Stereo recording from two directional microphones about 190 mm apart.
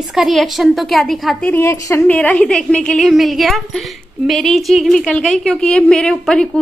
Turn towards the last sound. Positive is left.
turn(degrees=5)  # may be behind; listen again after turning